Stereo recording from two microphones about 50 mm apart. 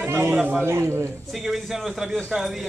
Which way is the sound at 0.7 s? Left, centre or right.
Right.